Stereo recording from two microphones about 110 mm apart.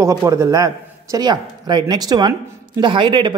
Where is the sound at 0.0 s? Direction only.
30° right (ahead or behind).